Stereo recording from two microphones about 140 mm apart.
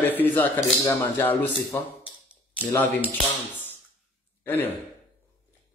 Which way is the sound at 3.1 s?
15° left (ahead or behind).